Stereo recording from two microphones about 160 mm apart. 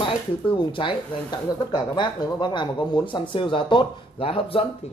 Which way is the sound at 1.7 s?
30° left (ahead or behind).